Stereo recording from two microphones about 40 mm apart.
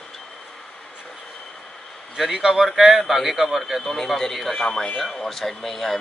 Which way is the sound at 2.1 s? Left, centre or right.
Centre.